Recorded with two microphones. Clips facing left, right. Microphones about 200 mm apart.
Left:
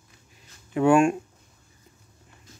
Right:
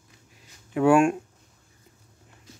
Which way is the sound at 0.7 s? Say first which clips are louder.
Even; 5° right (ahead or behind).